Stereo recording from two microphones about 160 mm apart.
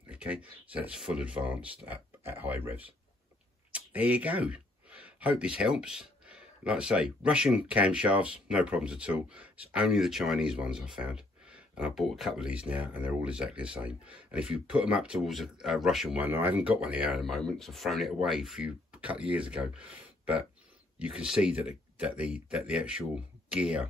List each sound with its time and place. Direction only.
0.1 s speech: 10° right (ahead or behind)